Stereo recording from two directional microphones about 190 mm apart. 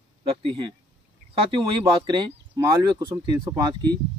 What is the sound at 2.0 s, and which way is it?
Speech, 25° right (ahead or behind).